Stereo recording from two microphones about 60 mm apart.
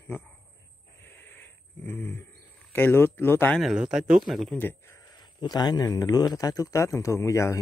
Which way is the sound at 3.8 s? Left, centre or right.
Centre.